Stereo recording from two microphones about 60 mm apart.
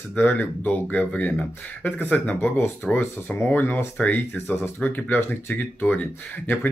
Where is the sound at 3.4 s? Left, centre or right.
Left.